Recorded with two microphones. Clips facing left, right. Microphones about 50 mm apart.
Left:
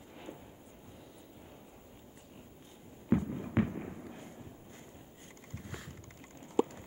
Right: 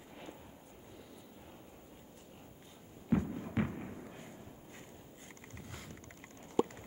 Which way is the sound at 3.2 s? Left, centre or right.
Centre.